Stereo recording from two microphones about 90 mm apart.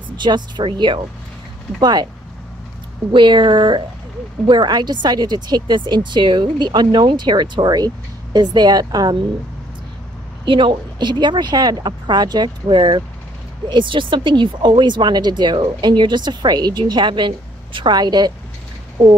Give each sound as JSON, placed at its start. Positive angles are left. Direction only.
{"t": 0.2, "sound": "speech", "side_deg": -60}
{"t": 1.8, "sound": "a woman's voice", "side_deg": -50}
{"t": 3.1, "sound": "a woman's voice", "side_deg": -60}
{"t": 10.4, "sound": "a woman's voice", "side_deg": -65}